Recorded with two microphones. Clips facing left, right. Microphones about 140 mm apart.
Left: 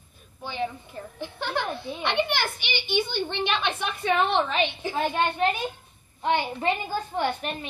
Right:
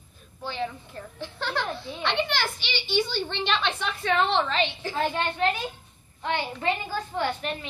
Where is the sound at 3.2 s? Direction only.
10° left (ahead or behind).